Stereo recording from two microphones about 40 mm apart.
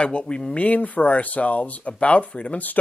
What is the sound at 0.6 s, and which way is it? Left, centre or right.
Speech, left.